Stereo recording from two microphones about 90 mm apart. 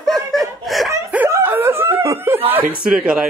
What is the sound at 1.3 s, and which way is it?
Snicker, 25° right (ahead or behind).